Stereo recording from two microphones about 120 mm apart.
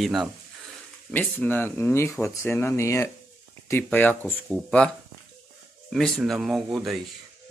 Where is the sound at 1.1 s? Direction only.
15° left (ahead or behind).